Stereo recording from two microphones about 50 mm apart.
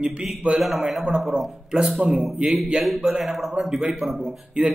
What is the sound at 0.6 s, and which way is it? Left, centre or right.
A man's voice, centre.